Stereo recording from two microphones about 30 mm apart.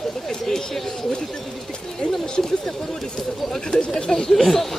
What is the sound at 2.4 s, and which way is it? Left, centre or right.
Speech, centre.